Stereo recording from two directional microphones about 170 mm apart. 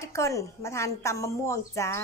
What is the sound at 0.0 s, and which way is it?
A woman's voice, 15° left (ahead or behind).